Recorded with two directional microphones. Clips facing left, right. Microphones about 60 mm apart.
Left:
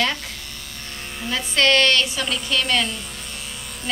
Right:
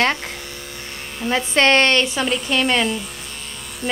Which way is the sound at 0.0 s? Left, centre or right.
Right.